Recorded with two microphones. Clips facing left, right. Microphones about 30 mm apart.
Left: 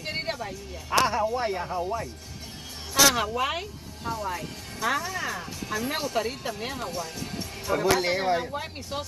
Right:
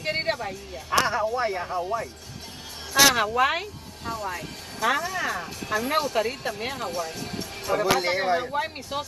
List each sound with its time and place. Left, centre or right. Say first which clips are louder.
0.0 s music: right 5 dB; right
1.0 s speech: right 1 dB; centre
2.9 s speech: right 2 dB; centre
4.1 s speech: even; right
7.7 s speech: right 1 dB; centre
8.5 s speech: right 5 dB; right